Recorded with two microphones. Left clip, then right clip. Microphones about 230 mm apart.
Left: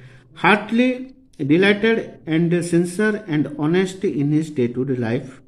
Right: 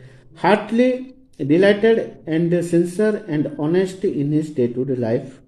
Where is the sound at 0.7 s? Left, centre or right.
Centre.